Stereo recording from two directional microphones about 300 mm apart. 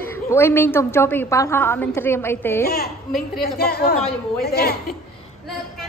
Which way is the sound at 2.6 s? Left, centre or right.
Left.